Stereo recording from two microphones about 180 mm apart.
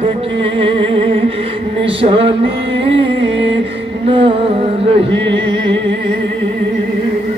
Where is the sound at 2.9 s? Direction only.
85° right.